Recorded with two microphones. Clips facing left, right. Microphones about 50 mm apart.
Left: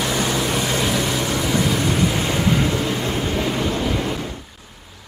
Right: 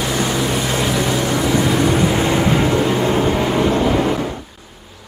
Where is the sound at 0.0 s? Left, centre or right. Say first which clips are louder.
Right 2 dB; centre; by 4.4 s right.